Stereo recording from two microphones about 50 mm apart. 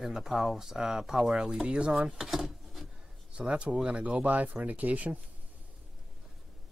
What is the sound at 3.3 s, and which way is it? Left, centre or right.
Speech, right.